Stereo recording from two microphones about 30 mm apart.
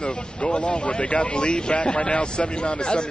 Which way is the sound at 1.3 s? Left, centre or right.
Left.